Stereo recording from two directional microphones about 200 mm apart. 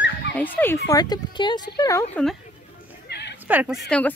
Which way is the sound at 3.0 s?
55° left (ahead or behind).